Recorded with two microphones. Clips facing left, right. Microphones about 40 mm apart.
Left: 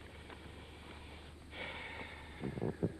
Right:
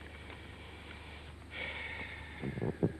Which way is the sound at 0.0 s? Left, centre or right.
Right.